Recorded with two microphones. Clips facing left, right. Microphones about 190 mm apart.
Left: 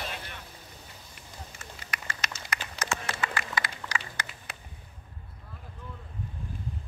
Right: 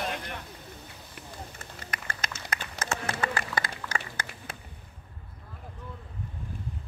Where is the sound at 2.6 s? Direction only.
50° right (ahead or behind).